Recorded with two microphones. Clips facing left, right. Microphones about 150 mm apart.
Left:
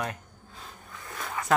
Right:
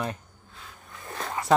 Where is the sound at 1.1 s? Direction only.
30° right (ahead or behind).